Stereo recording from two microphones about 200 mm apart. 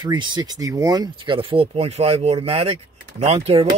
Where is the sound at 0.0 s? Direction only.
20° right (ahead or behind).